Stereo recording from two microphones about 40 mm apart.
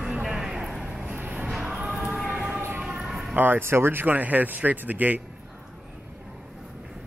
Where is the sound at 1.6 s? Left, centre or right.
Right.